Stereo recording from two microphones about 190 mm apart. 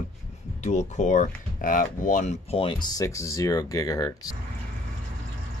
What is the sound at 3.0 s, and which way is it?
Speech, 15° left (ahead or behind).